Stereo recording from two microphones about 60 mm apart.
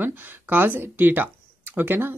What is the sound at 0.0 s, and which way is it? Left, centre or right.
Speech, right.